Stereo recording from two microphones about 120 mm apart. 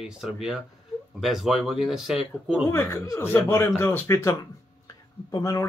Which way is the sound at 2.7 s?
20° left (ahead or behind).